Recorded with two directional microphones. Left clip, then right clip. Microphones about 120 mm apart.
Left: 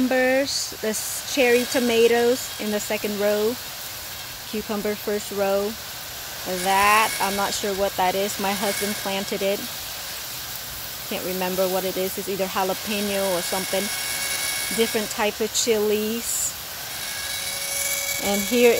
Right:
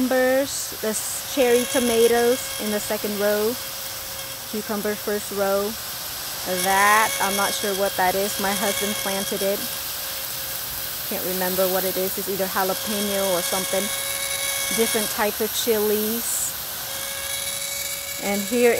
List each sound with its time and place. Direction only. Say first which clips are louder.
0.1 s speech: right 1 dB; 5° left (ahead or behind)
4.8 s speech: even; 5° right (ahead or behind)
11.5 s speech: right 1 dB; 10° right (ahead or behind)
15.0 s speech: even; 5° right (ahead or behind)
18.2 s speech: left 1 dB; 20° left (ahead or behind)